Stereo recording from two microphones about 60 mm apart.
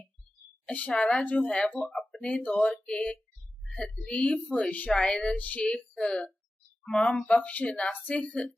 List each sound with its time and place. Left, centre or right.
0.7 s a woman's voice: centre